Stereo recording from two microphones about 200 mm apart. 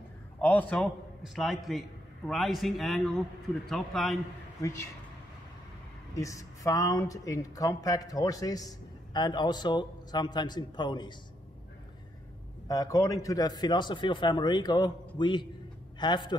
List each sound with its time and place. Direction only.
0.4 s a man's voice: 10° left (ahead or behind)
4.6 s speech: 15° left (ahead or behind)
6.1 s speech: 15° left (ahead or behind)
12.6 s speech: 15° left (ahead or behind)